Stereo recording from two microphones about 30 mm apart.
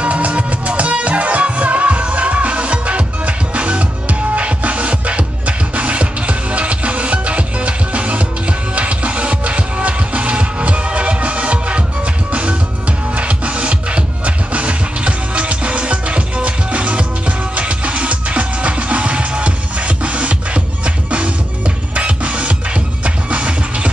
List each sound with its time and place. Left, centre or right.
0.0 s music: right